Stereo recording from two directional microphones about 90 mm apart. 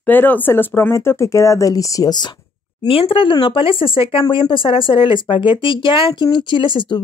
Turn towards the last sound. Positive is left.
turn(degrees=70)  # may be behind; listen again after turning